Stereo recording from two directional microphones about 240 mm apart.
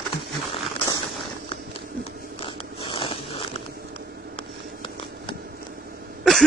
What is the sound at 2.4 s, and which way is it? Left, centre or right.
Biting, left.